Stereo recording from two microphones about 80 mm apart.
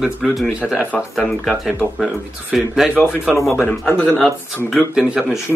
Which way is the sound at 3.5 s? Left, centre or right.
Left.